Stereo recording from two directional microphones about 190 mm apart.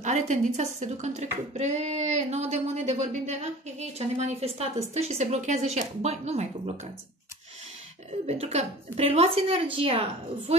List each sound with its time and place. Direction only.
0.0 s a child's voice: 40° right (ahead or behind)
8.3 s a child's voice: 35° right (ahead or behind)